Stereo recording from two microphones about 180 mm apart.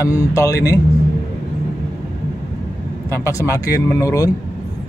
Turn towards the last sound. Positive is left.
turn(degrees=20)  # may be behind; listen again after turning